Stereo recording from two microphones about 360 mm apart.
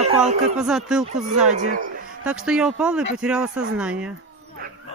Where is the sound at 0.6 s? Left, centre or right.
Centre.